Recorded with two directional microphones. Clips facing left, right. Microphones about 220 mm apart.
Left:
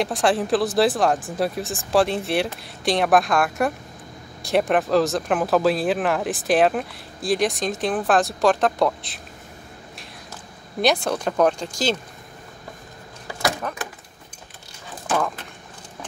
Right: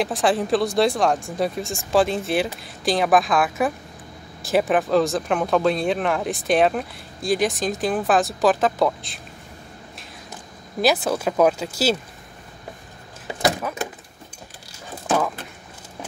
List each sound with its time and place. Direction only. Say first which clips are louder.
0.0 s speech: even; centre (ahead or behind)
10.8 s speech: right 1 dB; 5° right (ahead or behind)
13.3 s a sound: right 3 dB; 20° right (ahead or behind)